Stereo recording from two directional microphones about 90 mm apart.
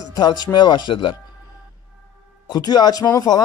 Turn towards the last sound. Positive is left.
turn(degrees=40)  # may be behind; listen again after turning